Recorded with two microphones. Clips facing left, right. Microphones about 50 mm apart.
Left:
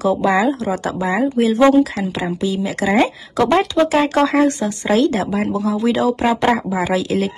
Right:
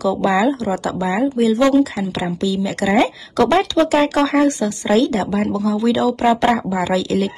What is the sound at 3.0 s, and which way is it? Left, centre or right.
Speech, left.